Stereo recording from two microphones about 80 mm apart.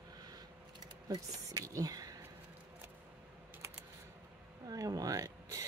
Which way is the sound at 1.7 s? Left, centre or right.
Right.